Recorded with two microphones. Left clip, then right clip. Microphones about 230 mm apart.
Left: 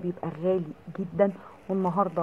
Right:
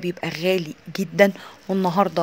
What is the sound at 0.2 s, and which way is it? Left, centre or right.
Speech, right.